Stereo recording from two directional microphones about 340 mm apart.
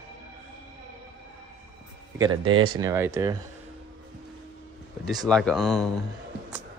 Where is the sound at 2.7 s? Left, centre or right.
Centre.